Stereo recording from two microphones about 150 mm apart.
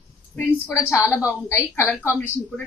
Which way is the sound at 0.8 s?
20° left (ahead or behind).